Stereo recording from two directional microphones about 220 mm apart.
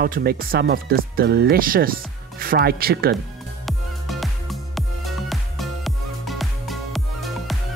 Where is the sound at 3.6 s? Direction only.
Centre (ahead or behind).